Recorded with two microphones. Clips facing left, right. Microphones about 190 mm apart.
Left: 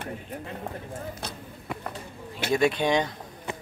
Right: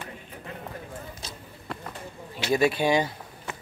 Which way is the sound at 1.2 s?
60° left (ahead or behind).